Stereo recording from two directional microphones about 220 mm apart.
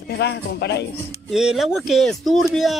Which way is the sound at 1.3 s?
Centre (ahead or behind).